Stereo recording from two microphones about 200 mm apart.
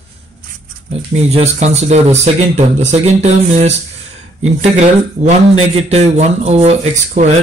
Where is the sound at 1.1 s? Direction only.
30° right (ahead or behind).